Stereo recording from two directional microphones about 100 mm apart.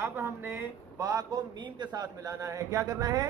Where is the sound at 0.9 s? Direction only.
35° right (ahead or behind).